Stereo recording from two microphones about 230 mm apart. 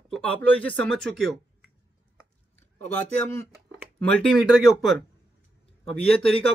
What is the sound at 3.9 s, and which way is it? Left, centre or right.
Speech, centre.